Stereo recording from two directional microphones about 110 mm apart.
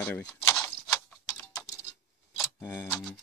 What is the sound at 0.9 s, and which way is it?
Tick-tock, 15° left (ahead or behind).